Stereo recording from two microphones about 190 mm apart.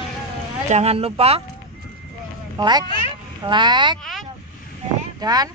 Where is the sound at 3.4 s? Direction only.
25° right (ahead or behind).